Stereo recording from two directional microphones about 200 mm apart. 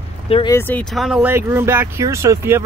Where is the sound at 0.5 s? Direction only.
10° left (ahead or behind).